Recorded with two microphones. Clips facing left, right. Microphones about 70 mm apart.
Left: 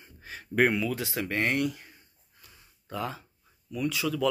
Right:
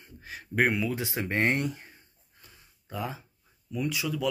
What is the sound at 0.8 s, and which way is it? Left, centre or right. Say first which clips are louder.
Speech: even; right.